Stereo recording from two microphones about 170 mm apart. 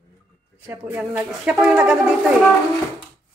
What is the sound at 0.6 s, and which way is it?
Speech, 10° right (ahead or behind).